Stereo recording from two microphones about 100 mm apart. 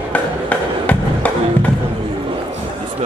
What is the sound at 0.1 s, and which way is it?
Music, 15° left (ahead or behind).